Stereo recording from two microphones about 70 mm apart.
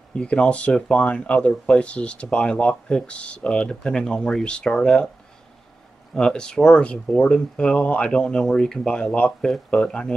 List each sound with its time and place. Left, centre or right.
0.1 s speech: centre
6.1 s speech: centre